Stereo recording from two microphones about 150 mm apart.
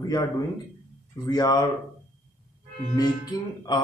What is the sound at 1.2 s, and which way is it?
Speech, 25° left (ahead or behind).